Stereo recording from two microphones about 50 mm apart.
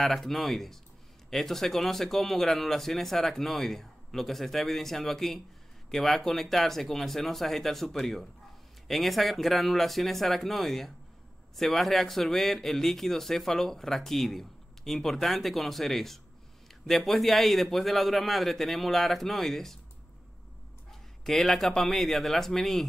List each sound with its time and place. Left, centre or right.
0.0 s speech: centre
20.9 s speech: centre